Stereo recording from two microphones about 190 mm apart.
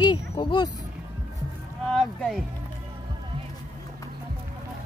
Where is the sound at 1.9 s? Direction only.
Centre (ahead or behind).